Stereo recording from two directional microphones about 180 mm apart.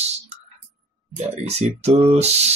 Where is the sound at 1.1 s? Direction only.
35° right (ahead or behind).